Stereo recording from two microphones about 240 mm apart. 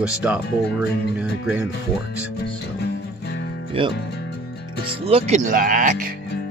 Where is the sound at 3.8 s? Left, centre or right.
Right.